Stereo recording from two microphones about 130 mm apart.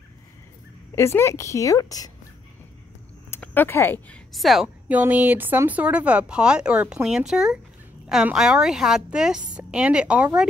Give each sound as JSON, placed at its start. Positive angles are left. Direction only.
{"t": 0.9, "sound": "a woman's voice", "side_deg": 20}
{"t": 3.3, "sound": "speech", "side_deg": 15}
{"t": 4.3, "sound": "a woman's voice", "side_deg": 0}
{"t": 4.8, "sound": "a woman's voice", "side_deg": -10}